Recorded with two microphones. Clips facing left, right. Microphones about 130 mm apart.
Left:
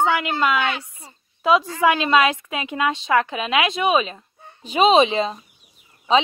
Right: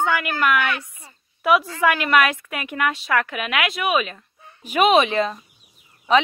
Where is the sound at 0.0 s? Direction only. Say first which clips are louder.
Left 2 dB; 20° left (ahead or behind).